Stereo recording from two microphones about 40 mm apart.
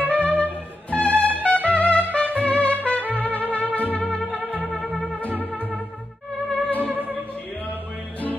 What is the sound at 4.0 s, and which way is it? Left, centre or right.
Music, left.